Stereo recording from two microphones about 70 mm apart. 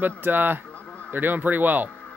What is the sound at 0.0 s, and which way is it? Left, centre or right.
Speech, right.